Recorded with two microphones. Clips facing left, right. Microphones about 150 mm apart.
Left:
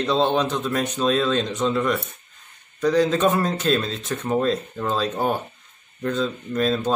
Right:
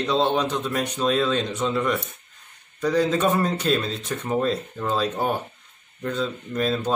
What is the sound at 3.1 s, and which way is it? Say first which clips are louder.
Speech: left 1 dB; 10° right (ahead or behind).